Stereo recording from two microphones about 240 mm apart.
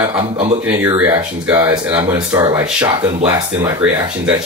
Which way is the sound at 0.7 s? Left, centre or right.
Centre.